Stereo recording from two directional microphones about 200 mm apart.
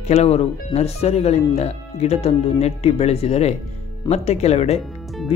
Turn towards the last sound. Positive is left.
turn(degrees=0)  # may be behind; listen again after turning